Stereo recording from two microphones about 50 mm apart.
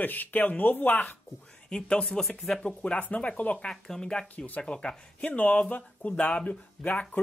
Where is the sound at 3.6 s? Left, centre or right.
Centre.